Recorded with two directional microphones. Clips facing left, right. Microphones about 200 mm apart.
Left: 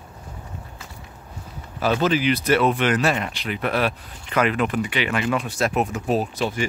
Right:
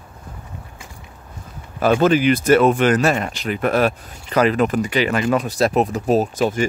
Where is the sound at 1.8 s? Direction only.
50° right (ahead or behind).